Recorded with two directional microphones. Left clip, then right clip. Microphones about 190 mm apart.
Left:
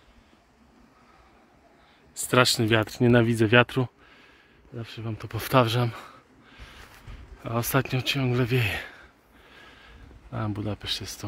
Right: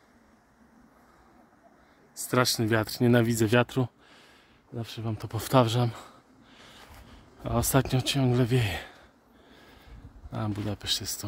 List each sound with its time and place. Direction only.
2.1 s speech: centre (ahead or behind)
4.7 s speech: 30° right (ahead or behind); by 9.0 s 15° right (ahead or behind)
9.5 s a sound: 5° right (ahead or behind)
10.3 s speech: 5° right (ahead or behind)